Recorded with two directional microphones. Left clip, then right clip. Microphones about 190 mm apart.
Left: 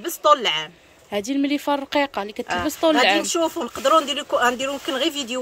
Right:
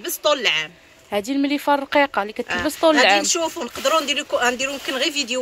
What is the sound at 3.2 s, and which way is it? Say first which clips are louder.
Speech: even; 50° left (ahead or behind).